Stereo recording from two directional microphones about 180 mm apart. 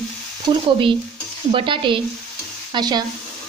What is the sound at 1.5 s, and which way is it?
Speech, 30° right (ahead or behind).